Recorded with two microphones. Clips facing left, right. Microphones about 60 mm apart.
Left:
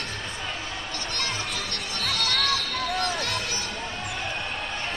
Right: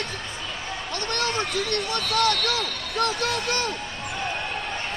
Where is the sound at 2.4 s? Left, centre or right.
Right.